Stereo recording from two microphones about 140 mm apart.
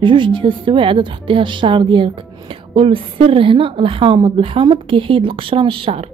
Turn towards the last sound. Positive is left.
turn(degrees=-40)  # may be behind; listen again after turning